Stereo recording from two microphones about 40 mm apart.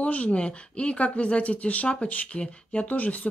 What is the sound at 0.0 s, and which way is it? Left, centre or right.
A woman's voice, left.